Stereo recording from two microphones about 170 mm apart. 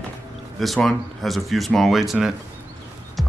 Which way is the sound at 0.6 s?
Centre (ahead or behind).